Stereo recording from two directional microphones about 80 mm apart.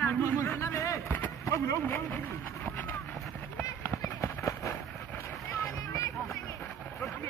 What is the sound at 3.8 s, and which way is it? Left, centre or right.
Fireworks, left.